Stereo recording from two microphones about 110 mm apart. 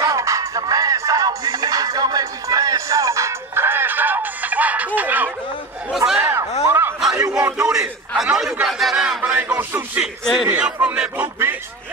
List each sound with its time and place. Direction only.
0.0 s music: 30° right (ahead or behind)
5.9 s a sound: 5° right (ahead or behind)
6.6 s a sound: 20° right (ahead or behind)
7.5 s a man's voice: 10° right (ahead or behind)
8.6 s battle cry: centre (ahead or behind)
9.6 s a man's voice: 15° right (ahead or behind)
10.2 s a man's voice: 5° right (ahead or behind)